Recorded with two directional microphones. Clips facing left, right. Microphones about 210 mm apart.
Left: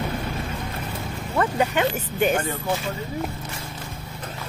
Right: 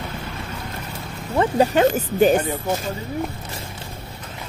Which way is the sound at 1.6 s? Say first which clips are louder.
Right 6 dB; 35° right (ahead or behind).